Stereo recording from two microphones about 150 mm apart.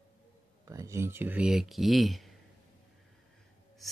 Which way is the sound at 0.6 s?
20° right (ahead or behind).